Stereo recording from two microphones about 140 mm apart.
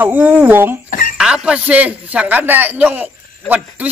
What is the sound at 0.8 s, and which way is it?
Speech, 90° left.